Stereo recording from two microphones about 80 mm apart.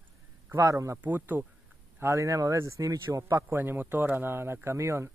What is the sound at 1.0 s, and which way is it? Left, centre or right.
Speech, right.